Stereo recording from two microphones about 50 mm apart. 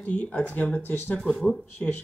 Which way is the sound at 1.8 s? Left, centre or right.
Left.